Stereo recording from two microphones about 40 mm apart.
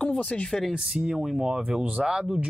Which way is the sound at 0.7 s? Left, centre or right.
Centre.